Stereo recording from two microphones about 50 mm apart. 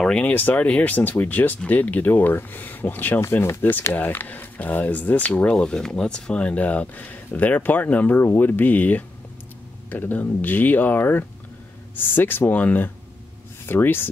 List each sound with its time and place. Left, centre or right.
0.3 s speech: left
0.6 s speech: left
3.2 s speech: left
5.5 s speech: centre; by 14.0 s left